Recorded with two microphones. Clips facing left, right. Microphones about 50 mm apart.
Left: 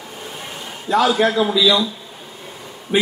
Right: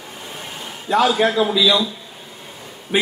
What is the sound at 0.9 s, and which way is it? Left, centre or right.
Speech, right.